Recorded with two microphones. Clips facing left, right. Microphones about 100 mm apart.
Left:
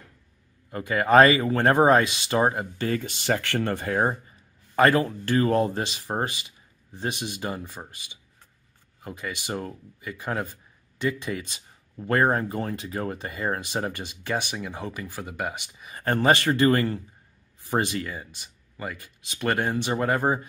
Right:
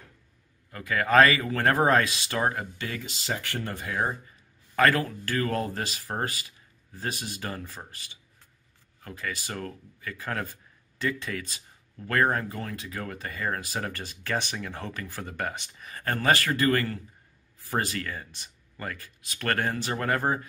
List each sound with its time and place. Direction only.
0.7 s speech: 25° left (ahead or behind)
2.8 s speech: 40° left (ahead or behind)
3.1 s speech: 65° left (ahead or behind)
3.9 s speech: 30° left (ahead or behind); by 16.0 s 10° left (ahead or behind)
16.0 s speech: 25° left (ahead or behind)